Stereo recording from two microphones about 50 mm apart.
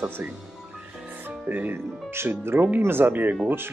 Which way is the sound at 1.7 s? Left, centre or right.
Right.